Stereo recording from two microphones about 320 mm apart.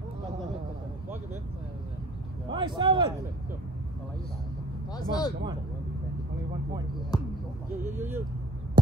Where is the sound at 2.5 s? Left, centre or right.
Centre.